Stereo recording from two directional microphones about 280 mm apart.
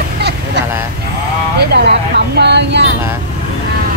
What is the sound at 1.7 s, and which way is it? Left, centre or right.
Vehicle, right.